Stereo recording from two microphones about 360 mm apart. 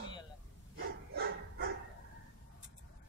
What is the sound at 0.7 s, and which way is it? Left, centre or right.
Dog, right.